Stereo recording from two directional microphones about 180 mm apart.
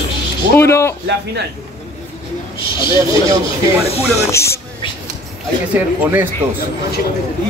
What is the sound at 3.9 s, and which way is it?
Speech, 35° left (ahead or behind).